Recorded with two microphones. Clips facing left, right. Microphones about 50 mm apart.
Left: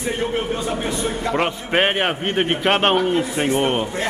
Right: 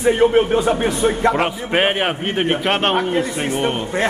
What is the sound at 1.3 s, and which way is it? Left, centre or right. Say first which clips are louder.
A man's voice: right 1 dB; centre.